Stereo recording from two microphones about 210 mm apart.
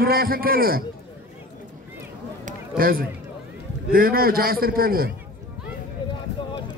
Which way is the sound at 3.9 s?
45° right (ahead or behind).